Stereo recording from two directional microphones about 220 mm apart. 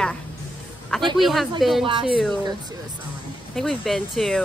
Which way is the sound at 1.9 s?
20° right (ahead or behind).